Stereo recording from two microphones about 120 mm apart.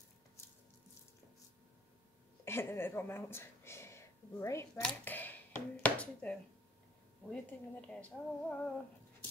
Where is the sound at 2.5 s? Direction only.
20° left (ahead or behind).